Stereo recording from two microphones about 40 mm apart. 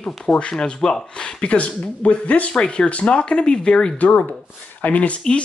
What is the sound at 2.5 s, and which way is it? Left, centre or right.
Speech, left.